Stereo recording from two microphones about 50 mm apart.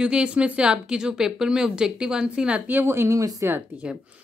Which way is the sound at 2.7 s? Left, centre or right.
Right.